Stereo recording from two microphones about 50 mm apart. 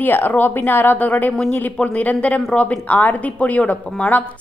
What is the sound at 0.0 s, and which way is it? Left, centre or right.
Speech, left.